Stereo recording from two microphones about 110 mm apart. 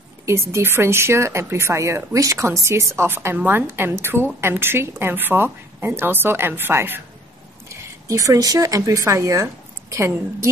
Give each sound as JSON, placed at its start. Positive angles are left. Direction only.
{"t": 0.2, "sound": "speech", "side_deg": -25}